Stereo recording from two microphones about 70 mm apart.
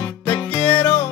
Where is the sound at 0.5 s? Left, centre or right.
Left.